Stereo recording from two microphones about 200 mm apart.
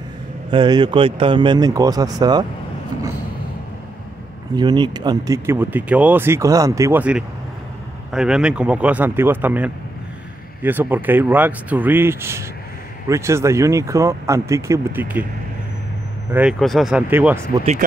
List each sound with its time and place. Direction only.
0.5 s speech: 25° right (ahead or behind)
4.6 s speech: 20° right (ahead or behind)
16.3 s speech: 5° right (ahead or behind)